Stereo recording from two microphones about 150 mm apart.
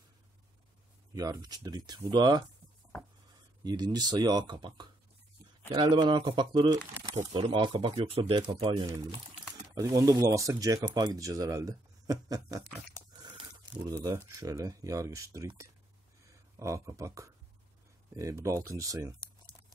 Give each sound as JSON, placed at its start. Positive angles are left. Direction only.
{"t": 1.1, "sound": "speech", "side_deg": -25}
{"t": 3.6, "sound": "speech", "side_deg": -25}
{"t": 13.8, "sound": "speech", "side_deg": -25}